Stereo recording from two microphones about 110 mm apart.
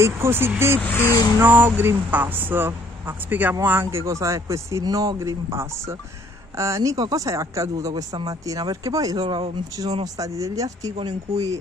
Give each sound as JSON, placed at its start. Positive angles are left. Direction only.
{"t": 0.0, "sound": "speech", "side_deg": -20}
{"t": 0.8, "sound": "speech", "side_deg": 25}
{"t": 1.4, "sound": "speech", "side_deg": -15}
{"t": 9.2, "sound": "speech", "side_deg": -60}
{"t": 9.8, "sound": "speech", "side_deg": -40}
{"t": 10.1, "sound": "speech", "side_deg": -30}